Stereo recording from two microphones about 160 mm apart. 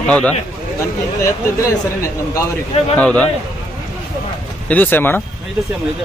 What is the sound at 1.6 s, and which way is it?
Speech, 20° left (ahead or behind).